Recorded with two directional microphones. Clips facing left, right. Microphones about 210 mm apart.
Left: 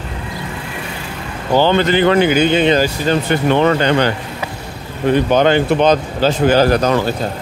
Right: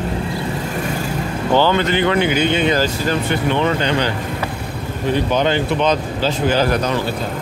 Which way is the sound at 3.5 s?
55° left (ahead or behind).